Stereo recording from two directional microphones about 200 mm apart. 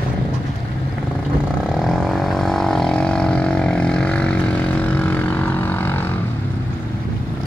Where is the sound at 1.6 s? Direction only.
Centre (ahead or behind).